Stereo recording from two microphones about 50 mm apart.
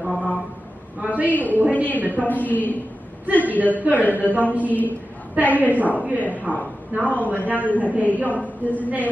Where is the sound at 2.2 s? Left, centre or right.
Left.